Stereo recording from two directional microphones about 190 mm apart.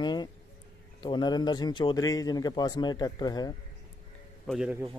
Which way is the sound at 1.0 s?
25° left (ahead or behind).